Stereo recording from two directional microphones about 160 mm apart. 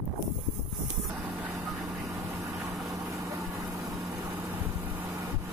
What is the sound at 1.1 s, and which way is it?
Vehicle, 10° right (ahead or behind).